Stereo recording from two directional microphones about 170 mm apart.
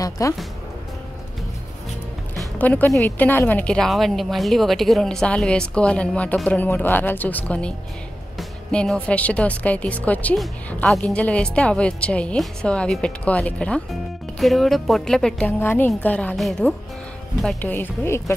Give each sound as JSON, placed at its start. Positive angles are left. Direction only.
{"t": 0.2, "sound": "speech", "side_deg": 20}
{"t": 2.3, "sound": "a woman's voice", "side_deg": 10}